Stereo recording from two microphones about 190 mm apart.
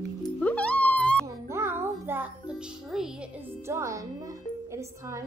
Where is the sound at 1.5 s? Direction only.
15° right (ahead or behind).